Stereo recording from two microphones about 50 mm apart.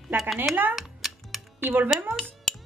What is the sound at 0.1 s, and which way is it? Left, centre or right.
Speech, right.